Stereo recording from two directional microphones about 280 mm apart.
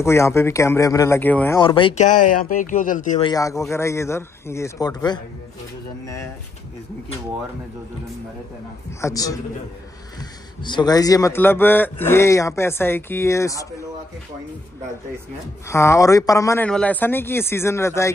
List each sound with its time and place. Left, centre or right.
0.0 s a man's voice: centre; by 3.3 s left
3.3 s a man's voice: centre
9.0 s a man's voice: centre
10.6 s a man's voice: centre
15.7 s a man's voice: centre